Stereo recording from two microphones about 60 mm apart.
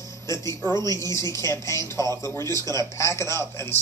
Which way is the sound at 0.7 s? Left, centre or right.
Left.